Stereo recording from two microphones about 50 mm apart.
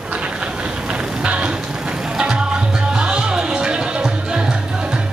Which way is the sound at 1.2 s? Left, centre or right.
Right.